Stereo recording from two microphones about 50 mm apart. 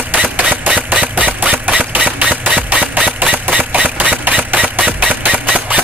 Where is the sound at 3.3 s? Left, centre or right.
Right.